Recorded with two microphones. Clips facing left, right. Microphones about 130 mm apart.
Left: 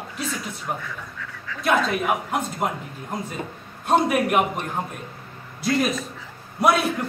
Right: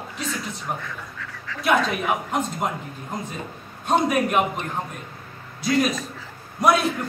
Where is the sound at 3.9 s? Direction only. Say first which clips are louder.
Left 1 dB; 5° left (ahead or behind).